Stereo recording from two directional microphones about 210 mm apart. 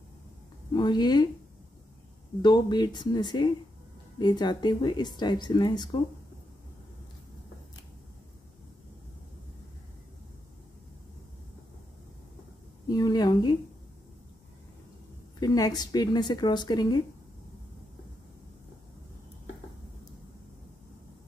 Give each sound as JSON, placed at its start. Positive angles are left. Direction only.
{"t": 0.7, "sound": "speech", "side_deg": 20}
{"t": 2.4, "sound": "speech", "side_deg": 20}
{"t": 12.8, "sound": "speech", "side_deg": 20}
{"t": 15.4, "sound": "speech", "side_deg": 15}